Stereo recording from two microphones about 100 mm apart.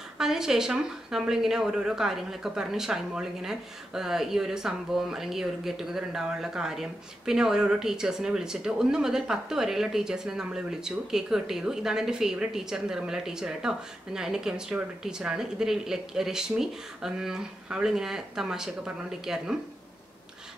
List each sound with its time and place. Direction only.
0.2 s speech: 5° right (ahead or behind)